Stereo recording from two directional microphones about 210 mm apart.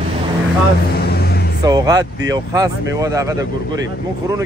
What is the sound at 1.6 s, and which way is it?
Speech, 20° right (ahead or behind).